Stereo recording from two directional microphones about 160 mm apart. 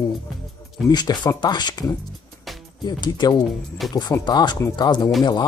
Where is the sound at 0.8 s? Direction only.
25° left (ahead or behind).